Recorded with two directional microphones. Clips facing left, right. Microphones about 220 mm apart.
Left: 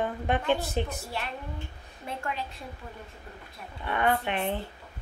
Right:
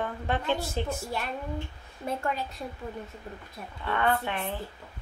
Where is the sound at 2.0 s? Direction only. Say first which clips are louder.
Right 5 dB; 40° right (ahead or behind).